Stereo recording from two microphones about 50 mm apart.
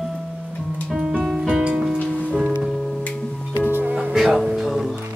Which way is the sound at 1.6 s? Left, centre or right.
Centre.